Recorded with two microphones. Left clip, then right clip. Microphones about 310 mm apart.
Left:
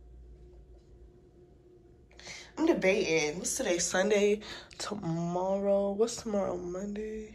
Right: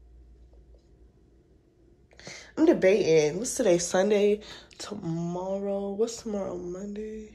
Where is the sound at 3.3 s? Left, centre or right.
Centre.